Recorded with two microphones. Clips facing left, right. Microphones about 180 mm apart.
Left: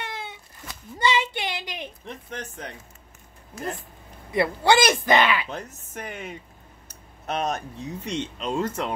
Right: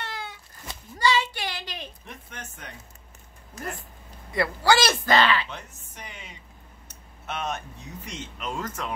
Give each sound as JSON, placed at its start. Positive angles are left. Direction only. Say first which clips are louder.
{"t": 0.0, "sound": "cat", "louder": "left 1 dB", "side_deg": 20}
{"t": 0.9, "sound": "child singing", "louder": "even", "side_deg": 20}
{"t": 2.3, "sound": "speech", "louder": "left 8 dB", "side_deg": 35}
{"t": 4.3, "sound": "speech", "louder": "left 2 dB", "side_deg": 20}
{"t": 5.5, "sound": "speech", "louder": "left 6 dB", "side_deg": 40}
{"t": 7.2, "sound": "speech", "louder": "left 5 dB", "side_deg": 40}
{"t": 8.1, "sound": "speech", "louder": "left 6 dB", "side_deg": 30}